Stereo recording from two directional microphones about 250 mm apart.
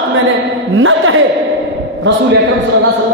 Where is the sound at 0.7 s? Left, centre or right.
Right.